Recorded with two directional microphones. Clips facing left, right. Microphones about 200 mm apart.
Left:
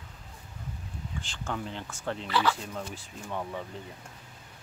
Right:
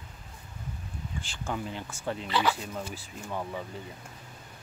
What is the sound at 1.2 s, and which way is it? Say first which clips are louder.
Speech: right 1 dB; 5° right (ahead or behind).